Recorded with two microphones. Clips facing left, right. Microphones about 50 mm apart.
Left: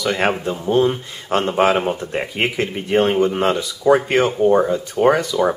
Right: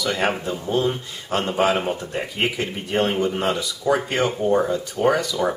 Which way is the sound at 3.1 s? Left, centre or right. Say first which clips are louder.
Left 5 dB; centre.